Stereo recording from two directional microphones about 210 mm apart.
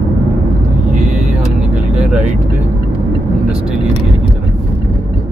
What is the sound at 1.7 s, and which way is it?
Vehicle, 5° right (ahead or behind).